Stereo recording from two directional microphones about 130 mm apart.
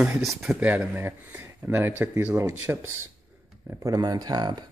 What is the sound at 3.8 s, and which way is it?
Speech, 30° right (ahead or behind).